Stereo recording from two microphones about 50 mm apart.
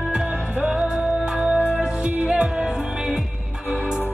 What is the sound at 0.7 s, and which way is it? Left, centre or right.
Music, centre.